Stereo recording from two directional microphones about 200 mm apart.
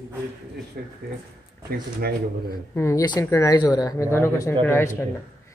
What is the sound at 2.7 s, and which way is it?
A woman's voice, 15° left (ahead or behind).